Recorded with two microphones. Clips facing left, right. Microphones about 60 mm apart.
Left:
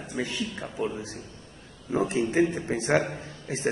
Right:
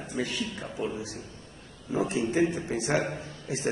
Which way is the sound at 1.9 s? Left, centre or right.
Left.